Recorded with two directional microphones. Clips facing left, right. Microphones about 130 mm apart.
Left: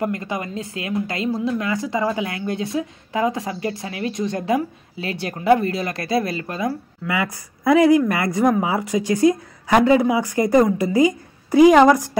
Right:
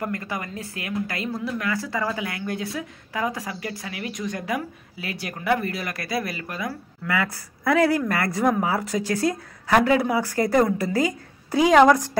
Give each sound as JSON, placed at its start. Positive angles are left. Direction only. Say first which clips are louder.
{"t": 0.0, "sound": "speech", "louder": "left 5 dB", "side_deg": 20}
{"t": 7.1, "sound": "speech", "louder": "left 2 dB", "side_deg": 15}